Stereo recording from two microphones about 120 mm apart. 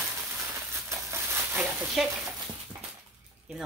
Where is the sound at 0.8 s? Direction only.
20° right (ahead or behind).